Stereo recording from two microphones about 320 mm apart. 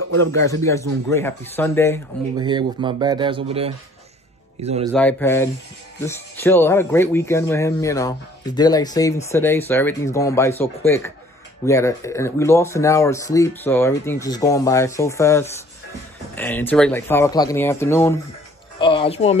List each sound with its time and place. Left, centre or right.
0.3 s speech: centre
2.3 s speech: centre
4.9 s speech: centre
18.8 s music: centre